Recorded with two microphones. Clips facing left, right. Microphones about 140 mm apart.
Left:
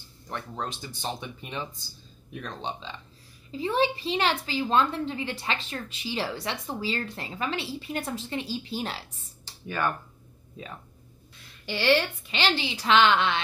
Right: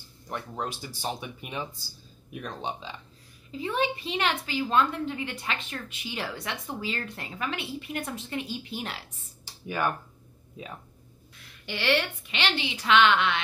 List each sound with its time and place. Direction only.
0.3 s speech: 10° right (ahead or behind)
3.5 s a woman's voice: 30° left (ahead or behind)
9.4 s a sound: 15° right (ahead or behind)
11.6 s a woman's voice: 30° left (ahead or behind)